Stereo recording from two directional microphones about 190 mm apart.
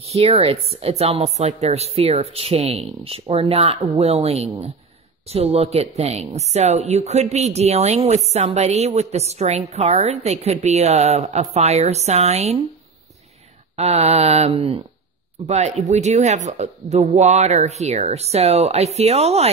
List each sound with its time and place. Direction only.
0.1 s a woman's voice: 30° right (ahead or behind)
13.7 s a woman's voice: 35° right (ahead or behind)